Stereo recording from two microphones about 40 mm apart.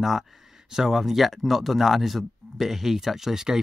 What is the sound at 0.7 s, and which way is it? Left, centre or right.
Speech, centre.